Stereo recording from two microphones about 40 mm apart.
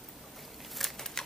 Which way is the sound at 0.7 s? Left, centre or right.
Centre.